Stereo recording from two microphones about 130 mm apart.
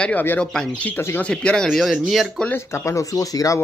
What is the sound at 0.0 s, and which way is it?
Speech, 15° left (ahead or behind).